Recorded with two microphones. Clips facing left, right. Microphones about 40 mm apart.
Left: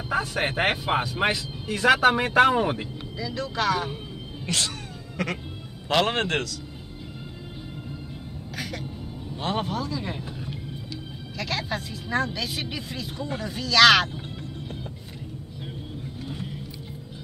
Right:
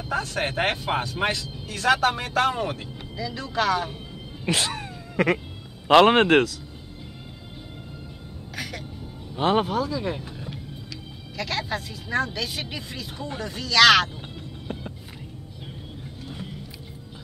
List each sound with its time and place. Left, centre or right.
0.1 s speech: centre
3.2 s speech: centre
4.5 s cat: centre
5.9 s a man's voice: right
9.4 s a man's voice: centre
9.7 s speech: centre